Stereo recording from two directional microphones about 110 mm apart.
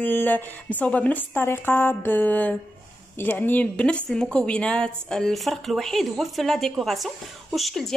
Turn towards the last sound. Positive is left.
turn(degrees=0)  # may be behind; listen again after turning